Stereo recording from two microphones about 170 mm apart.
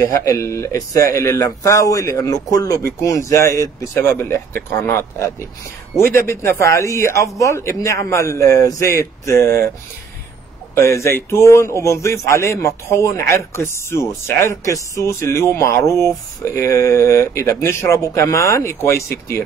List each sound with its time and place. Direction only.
0.0 s a man's voice: 20° left (ahead or behind)
6.6 s a man's voice: 15° left (ahead or behind)
10.7 s a man's voice: 15° left (ahead or behind)